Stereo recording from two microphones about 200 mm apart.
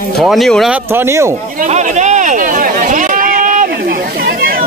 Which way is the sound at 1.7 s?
35° right (ahead or behind).